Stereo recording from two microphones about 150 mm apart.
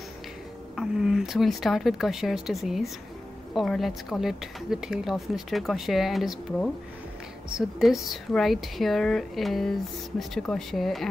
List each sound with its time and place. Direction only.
0.7 s speech: 5° right (ahead or behind)